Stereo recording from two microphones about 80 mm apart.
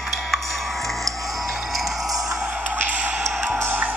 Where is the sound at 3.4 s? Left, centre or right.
Right.